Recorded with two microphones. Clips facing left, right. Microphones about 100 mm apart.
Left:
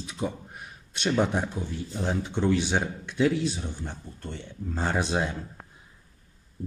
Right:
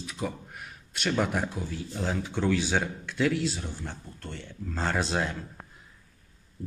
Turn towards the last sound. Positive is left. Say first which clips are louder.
# left 1 dB
turn(degrees=15)  # may be behind; listen again after turning